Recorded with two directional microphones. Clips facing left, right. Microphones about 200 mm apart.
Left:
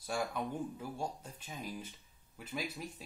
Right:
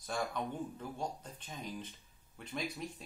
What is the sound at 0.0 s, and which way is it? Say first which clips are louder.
Speech: left 1 dB; 10° left (ahead or behind).